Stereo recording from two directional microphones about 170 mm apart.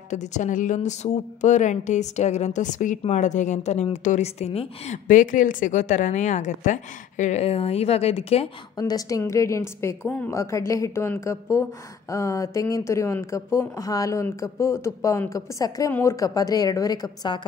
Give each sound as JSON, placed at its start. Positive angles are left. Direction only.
{"t": 0.1, "sound": "a woman's voice", "side_deg": 45}
{"t": 8.7, "sound": "a woman's voice", "side_deg": 20}